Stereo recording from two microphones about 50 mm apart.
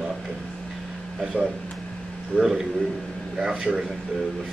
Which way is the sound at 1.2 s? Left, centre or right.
Centre.